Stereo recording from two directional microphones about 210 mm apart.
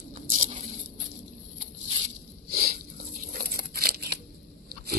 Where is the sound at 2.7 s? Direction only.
40° right (ahead or behind).